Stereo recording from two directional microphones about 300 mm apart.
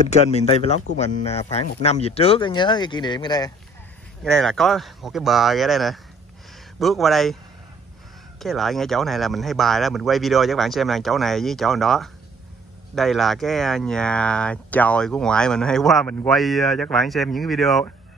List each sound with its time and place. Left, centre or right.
0.0 s speech: left
4.2 s speech: centre
8.4 s speech: centre